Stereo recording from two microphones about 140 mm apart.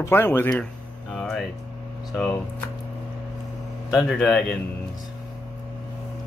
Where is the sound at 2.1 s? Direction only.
10° left (ahead or behind).